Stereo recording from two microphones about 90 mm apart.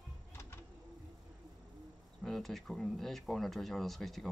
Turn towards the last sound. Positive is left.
turn(degrees=0)  # may be behind; listen again after turning